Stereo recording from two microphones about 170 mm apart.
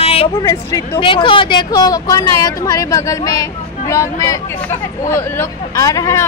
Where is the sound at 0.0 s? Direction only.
35° left (ahead or behind).